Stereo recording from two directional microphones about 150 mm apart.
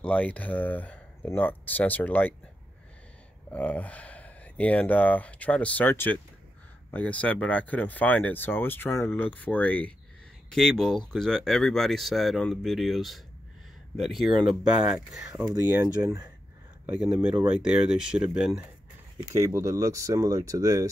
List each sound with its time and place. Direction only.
0.0 s speech: 10° left (ahead or behind)
3.4 s speech: 10° left (ahead or behind); by 15.5 s 5° right (ahead or behind)
15.8 s speech: 20° right (ahead or behind)
16.8 s speech: 5° right (ahead or behind)
19.3 s speech: 20° right (ahead or behind)